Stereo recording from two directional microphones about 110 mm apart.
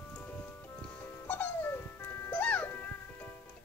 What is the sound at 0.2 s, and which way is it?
Music, 10° left (ahead or behind).